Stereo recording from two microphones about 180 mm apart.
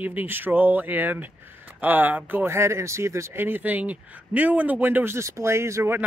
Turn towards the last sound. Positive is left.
turn(degrees=-15)  # may be behind; listen again after turning